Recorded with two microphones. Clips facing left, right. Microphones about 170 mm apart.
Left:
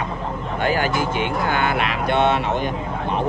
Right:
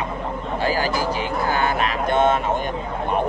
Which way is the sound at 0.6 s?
35° right (ahead or behind).